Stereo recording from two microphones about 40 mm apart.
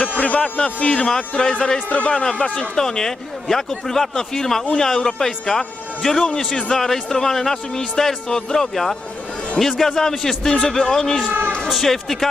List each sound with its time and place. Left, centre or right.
0.0 s speech: left
2.7 s a man's voice: centre
8.3 s a man's voice: centre